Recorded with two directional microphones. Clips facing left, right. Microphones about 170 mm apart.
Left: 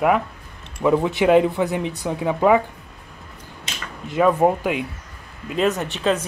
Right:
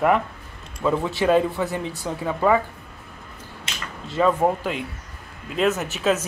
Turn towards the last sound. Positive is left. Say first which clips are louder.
# left 1 dB
turn(degrees=-5)  # may be behind; listen again after turning